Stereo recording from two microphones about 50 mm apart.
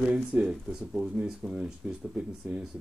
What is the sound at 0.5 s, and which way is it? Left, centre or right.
Speech, centre.